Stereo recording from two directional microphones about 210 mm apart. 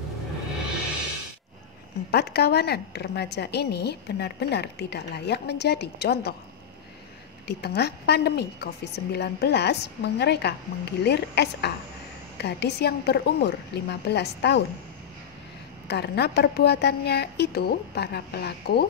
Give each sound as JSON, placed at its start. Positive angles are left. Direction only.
{"t": 2.0, "sound": "a woman's voice", "side_deg": 50}
{"t": 7.4, "sound": "a woman's voice", "side_deg": 50}
{"t": 15.9, "sound": "a woman's voice", "side_deg": 50}